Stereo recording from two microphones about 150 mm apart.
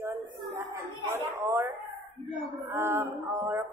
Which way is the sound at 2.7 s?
15° right (ahead or behind).